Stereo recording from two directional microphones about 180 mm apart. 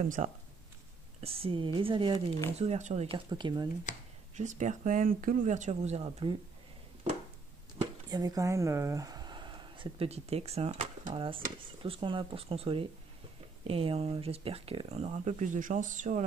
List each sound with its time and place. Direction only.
0.0 s speech: 45° right (ahead or behind)
1.2 s speech: 30° right (ahead or behind)
3.3 s speech: 25° right (ahead or behind)
3.9 s speech: 40° left (ahead or behind)
4.4 s speech: 40° right (ahead or behind)
8.1 s speech: 20° right (ahead or behind); by 16.3 s 45° right (ahead or behind)